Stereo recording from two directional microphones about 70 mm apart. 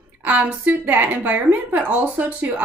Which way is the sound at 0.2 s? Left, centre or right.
Right.